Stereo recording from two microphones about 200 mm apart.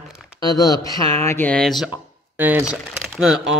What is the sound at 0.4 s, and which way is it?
Speech, 20° left (ahead or behind).